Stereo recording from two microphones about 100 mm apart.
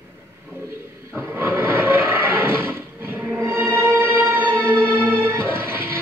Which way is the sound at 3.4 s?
20° right (ahead or behind).